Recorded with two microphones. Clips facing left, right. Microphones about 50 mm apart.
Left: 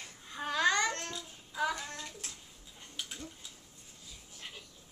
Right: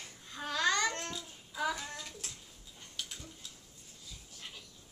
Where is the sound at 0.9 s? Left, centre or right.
Centre.